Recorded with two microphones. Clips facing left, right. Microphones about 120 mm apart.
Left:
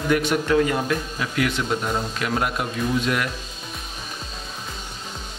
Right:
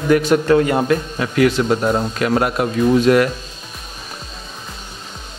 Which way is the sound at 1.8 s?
55° right (ahead or behind).